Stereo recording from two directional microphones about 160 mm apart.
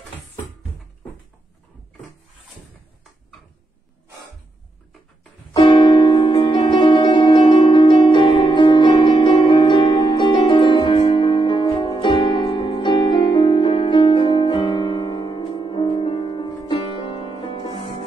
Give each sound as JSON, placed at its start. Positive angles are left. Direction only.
{"t": 5.5, "sound": "music", "side_deg": 30}